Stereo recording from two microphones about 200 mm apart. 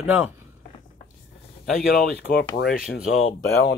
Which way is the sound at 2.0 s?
55° left (ahead or behind).